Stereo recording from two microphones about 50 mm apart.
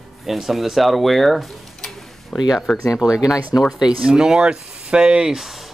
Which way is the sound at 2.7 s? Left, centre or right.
Centre.